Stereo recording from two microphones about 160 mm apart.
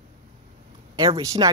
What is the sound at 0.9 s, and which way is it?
Speech, 30° right (ahead or behind).